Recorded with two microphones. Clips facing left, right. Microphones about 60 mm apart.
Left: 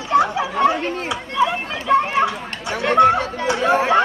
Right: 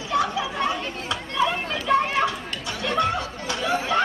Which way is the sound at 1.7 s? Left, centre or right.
Left.